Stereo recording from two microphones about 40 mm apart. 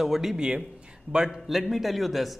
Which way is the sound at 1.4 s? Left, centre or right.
Centre.